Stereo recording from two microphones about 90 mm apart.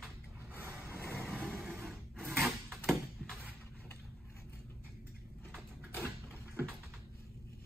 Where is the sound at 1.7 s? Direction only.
5° right (ahead or behind).